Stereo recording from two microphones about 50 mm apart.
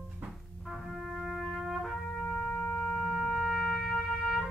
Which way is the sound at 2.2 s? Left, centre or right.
Centre.